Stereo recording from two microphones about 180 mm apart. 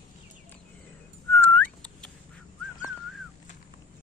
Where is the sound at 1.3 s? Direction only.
10° left (ahead or behind).